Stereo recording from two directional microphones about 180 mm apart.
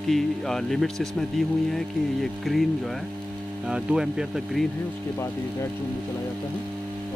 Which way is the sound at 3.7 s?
5° right (ahead or behind).